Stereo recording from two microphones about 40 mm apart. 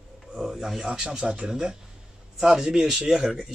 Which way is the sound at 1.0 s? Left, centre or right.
Right.